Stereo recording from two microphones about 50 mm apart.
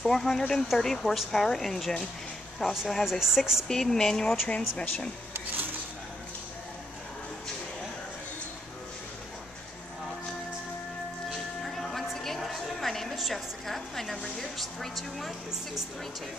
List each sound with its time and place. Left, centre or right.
0.0 s speech: centre
3.6 s speech: centre
4.5 s speech: left
5.3 s a sound: right
11.2 s music: centre
13.1 s a sound: centre